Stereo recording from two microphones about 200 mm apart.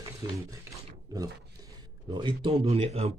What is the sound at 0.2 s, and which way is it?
Speech, 20° right (ahead or behind).